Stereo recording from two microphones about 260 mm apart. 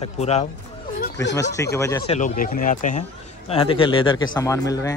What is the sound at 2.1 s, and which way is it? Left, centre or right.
A man's voice, left.